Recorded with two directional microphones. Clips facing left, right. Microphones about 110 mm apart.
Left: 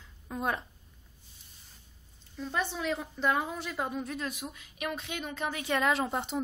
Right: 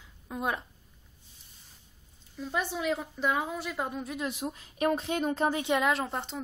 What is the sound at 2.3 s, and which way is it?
A woman's voice, 5° right (ahead or behind).